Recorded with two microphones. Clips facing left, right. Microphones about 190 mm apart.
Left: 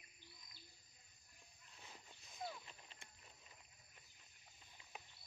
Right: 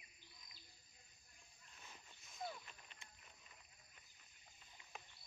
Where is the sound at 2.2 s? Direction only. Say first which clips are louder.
Even; 30° left (ahead or behind).